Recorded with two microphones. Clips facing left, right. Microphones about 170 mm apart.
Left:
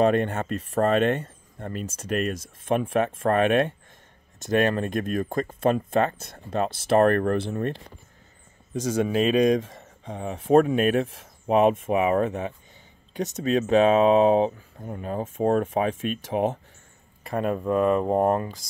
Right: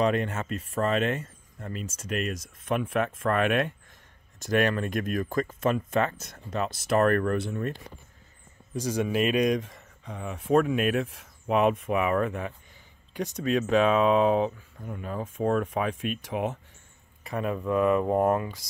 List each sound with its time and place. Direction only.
0.3 s speech: 35° left (ahead or behind)
9.0 s speech: 30° left (ahead or behind)
17.3 s speech: 45° left (ahead or behind)